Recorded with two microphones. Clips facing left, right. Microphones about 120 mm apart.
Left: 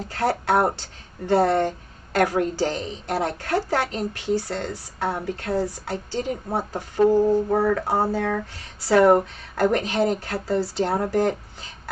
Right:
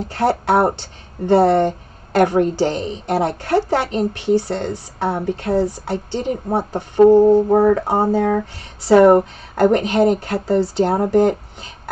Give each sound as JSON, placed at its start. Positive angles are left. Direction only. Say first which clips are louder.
{"t": 0.1, "sound": "speech", "louder": "right 5 dB", "side_deg": -20}